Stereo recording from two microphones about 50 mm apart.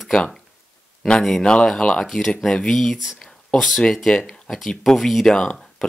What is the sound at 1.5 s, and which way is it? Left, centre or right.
Speech, centre.